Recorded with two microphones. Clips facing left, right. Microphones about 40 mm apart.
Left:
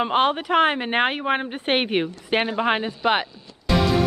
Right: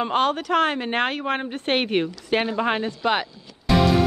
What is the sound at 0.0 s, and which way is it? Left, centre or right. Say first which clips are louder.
Speech: left 1 dB; left.